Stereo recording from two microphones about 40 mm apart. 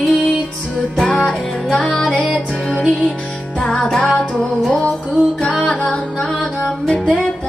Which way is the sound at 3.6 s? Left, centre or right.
Left.